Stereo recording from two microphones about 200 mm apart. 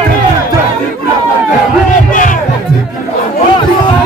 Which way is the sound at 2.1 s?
40° left (ahead or behind).